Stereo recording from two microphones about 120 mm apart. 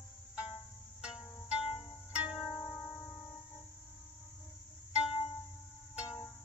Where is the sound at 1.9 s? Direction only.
40° left (ahead or behind).